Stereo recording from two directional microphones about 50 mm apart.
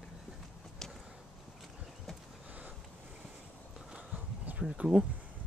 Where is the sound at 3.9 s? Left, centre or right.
Right.